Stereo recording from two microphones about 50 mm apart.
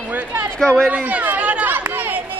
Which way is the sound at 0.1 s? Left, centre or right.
Right.